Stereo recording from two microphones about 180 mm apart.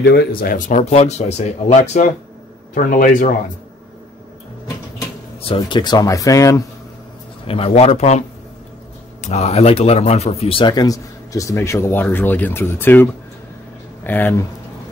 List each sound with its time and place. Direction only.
0.0 s speech: 65° left (ahead or behind); by 3.3 s 45° left (ahead or behind)
5.4 s a man's voice: 30° left (ahead or behind)
7.4 s speech: 30° left (ahead or behind)
9.2 s a man's voice: 40° left (ahead or behind); by 14.3 s 10° left (ahead or behind)